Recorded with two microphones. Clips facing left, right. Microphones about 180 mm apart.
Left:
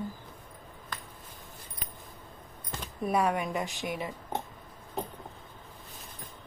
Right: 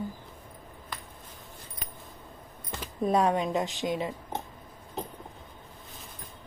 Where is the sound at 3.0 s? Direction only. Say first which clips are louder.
Right 3 dB; 25° right (ahead or behind).